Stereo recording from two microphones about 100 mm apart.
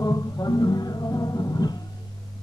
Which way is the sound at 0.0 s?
40° left (ahead or behind).